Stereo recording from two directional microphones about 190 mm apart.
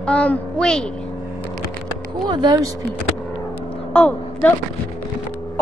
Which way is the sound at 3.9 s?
5° left (ahead or behind).